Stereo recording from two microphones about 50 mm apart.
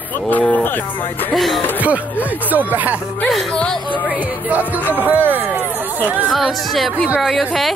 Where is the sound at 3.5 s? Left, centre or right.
Left.